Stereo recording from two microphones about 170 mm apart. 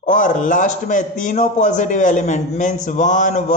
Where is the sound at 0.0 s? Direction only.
50° left (ahead or behind).